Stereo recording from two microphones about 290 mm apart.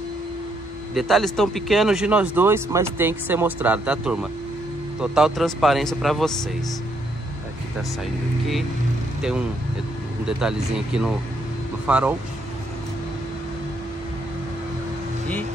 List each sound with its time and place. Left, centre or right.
0.9 s speech: centre
10.2 s speech: centre